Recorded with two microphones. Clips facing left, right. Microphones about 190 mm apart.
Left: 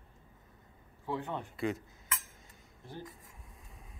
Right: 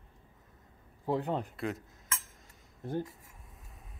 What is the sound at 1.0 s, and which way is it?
Speech, 40° right (ahead or behind).